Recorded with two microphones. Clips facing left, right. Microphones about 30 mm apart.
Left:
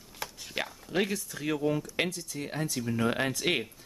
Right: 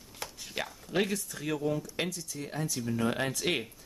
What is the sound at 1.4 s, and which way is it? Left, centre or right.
Speech, centre.